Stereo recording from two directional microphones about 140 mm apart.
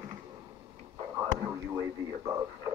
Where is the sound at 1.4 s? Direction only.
25° right (ahead or behind).